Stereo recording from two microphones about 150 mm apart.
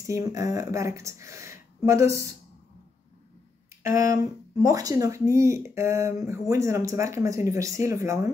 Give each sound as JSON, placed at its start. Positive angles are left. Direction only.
{"t": 0.1, "sound": "speech", "side_deg": -20}
{"t": 4.2, "sound": "speech", "side_deg": -25}